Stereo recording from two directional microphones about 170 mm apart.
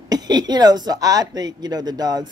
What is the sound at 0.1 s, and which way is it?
Speech, 25° right (ahead or behind).